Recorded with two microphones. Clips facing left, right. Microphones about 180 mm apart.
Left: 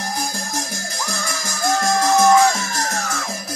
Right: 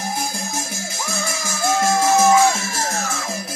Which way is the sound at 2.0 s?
5° right (ahead or behind).